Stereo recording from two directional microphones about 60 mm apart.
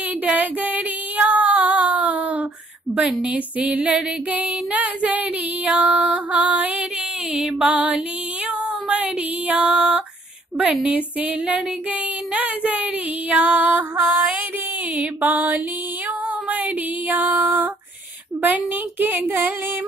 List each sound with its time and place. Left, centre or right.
0.2 s female singing: right
7.3 s music: centre
8.8 s a sound: centre
10.6 s female singing: right
12.4 s speech: right
13.3 s female singing: right
16.4 s music: right
18.4 s a woman's voice: right